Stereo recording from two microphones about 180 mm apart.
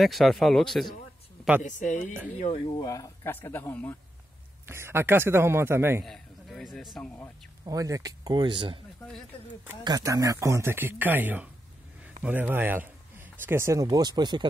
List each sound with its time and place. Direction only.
0.0 s speech: centre (ahead or behind)
1.6 s a woman's voice: 45° left (ahead or behind)
2.8 s speech: 20° left (ahead or behind)
4.6 s speech: 15° right (ahead or behind)
6.0 s a man's voice: centre (ahead or behind)
7.6 s speech: 20° right (ahead or behind)
9.8 s speech: 20° right (ahead or behind)